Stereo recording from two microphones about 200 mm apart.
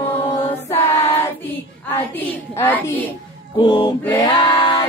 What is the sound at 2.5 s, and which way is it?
Child singing, 10° left (ahead or behind).